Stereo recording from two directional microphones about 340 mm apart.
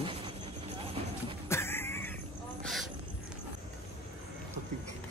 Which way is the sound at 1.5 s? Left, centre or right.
Centre.